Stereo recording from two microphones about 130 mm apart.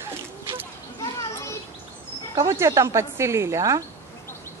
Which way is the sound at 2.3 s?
25° right (ahead or behind).